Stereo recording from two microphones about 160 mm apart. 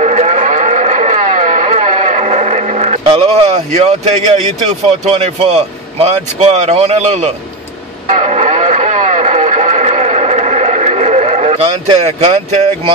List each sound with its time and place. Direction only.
0.0 s moo: 45° right (ahead or behind)
3.2 s speech: 40° right (ahead or behind)
8.1 s radio: 50° right (ahead or behind)